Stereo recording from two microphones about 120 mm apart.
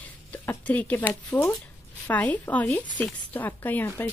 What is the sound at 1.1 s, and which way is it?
Speech, 25° left (ahead or behind).